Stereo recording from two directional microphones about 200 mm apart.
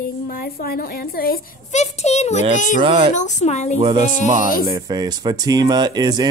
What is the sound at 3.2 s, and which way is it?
Speech, 35° left (ahead or behind).